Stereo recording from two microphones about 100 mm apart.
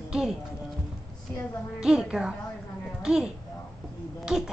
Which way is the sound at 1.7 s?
5° right (ahead or behind).